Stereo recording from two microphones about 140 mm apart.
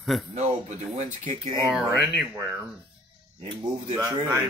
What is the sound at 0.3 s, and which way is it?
Speech, 55° right (ahead or behind).